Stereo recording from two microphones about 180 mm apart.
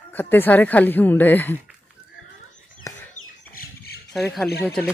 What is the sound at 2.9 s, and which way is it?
Chicken, 15° left (ahead or behind).